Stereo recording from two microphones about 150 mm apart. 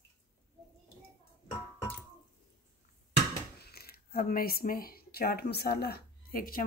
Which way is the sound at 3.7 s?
90° left.